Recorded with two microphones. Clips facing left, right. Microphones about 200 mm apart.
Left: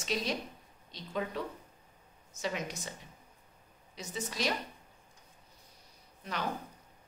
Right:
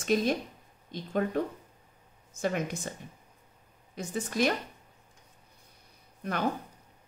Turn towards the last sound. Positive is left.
turn(degrees=-55)  # may be behind; listen again after turning